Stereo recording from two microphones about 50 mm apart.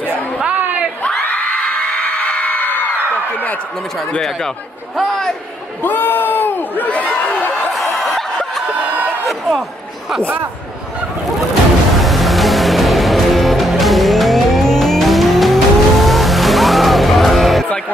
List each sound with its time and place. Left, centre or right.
1.5 s a sound: left
4.9 s a man's voice: centre
5.9 s crowd: left
6.9 s snicker: left
7.7 s snicker: centre
12.0 s music: centre